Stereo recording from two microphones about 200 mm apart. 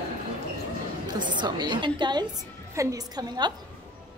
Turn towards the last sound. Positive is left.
turn(degrees=-20)  # may be behind; listen again after turning